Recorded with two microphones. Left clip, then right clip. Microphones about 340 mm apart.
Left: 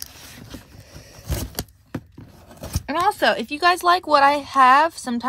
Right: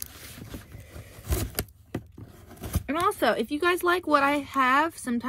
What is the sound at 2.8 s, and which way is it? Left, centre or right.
Speech, left.